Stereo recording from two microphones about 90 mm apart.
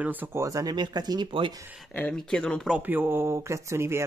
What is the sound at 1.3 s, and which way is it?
Speech, 70° right (ahead or behind).